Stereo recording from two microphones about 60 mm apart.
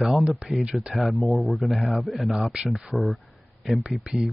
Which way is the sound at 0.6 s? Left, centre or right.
Centre.